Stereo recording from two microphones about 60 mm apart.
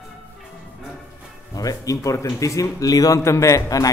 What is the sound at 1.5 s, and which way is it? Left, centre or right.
A man's voice, left.